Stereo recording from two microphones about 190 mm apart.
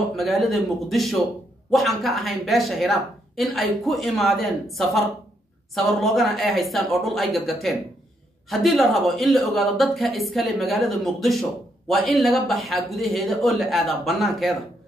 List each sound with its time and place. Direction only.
0.1 s speech: centre (ahead or behind)